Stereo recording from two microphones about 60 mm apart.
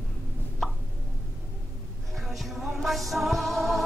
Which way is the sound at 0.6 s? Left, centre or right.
Centre.